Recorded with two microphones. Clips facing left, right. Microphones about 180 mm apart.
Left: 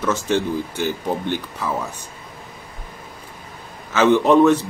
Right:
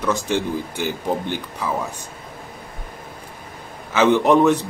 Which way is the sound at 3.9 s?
15° right (ahead or behind).